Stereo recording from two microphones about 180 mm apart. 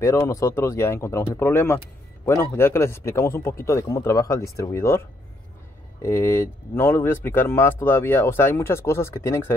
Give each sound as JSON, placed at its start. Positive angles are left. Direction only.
{"t": 0.0, "sound": "speech", "side_deg": 15}
{"t": 6.0, "sound": "speech", "side_deg": 15}